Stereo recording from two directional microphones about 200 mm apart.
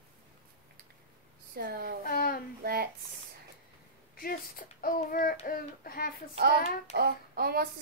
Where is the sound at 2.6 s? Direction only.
50° right (ahead or behind).